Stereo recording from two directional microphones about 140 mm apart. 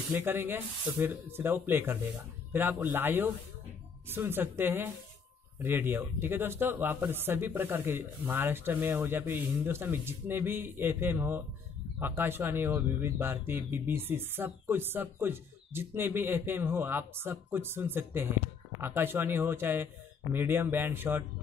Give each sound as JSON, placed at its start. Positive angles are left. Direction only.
{"t": 0.1, "sound": "speech", "side_deg": -15}